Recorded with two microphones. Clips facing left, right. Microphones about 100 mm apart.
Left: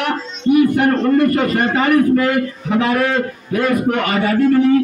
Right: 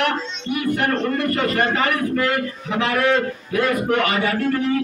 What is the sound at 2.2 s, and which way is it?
A man's voice, 40° left (ahead or behind).